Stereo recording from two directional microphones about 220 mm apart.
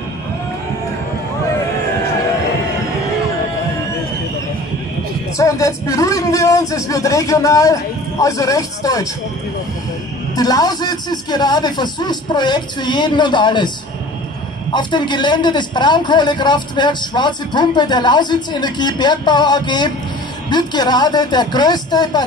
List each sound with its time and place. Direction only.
5.4 s a man's voice: 15° left (ahead or behind)
10.3 s a man's voice: 15° left (ahead or behind)
14.7 s a man's voice: 20° left (ahead or behind)